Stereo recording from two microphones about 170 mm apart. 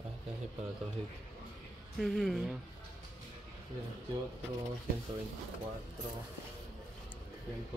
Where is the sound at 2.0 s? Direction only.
Centre (ahead or behind).